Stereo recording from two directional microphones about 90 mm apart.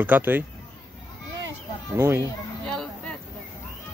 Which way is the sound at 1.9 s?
30° right (ahead or behind).